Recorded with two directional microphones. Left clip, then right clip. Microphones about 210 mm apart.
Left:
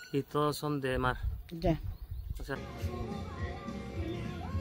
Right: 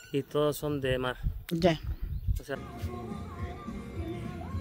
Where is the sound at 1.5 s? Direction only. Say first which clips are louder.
Right 10 dB; 20° right (ahead or behind).